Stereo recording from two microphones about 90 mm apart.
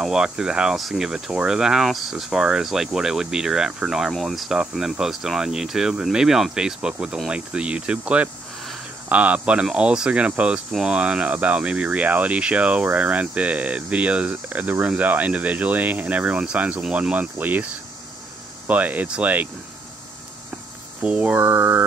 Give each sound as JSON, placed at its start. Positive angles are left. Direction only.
{"t": 0.0, "sound": "speech", "side_deg": -5}
{"t": 18.7, "sound": "speech", "side_deg": -20}
{"t": 21.0, "sound": "mantra", "side_deg": -15}